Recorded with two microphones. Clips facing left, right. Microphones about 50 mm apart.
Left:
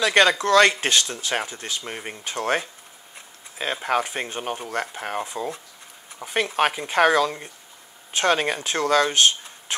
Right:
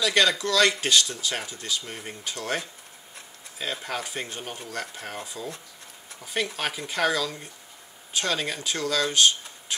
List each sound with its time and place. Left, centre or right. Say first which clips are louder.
0.0 s speech: left 5 dB; left